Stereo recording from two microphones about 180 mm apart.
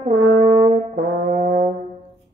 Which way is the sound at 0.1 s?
60° right (ahead or behind).